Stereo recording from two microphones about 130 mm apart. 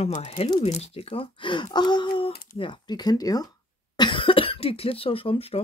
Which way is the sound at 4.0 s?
40° left (ahead or behind).